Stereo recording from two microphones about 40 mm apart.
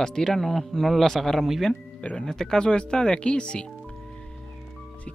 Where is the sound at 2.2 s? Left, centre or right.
Centre.